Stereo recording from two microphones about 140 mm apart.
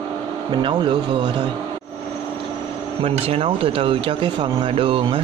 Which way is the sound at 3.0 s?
45° right (ahead or behind).